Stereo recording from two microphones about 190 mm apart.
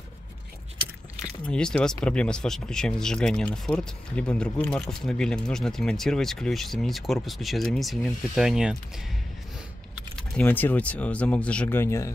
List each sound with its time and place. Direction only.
1.4 s speech: 5° left (ahead or behind)
10.1 s speech: 10° left (ahead or behind)